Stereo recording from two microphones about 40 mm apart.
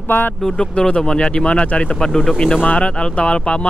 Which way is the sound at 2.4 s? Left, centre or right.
Left.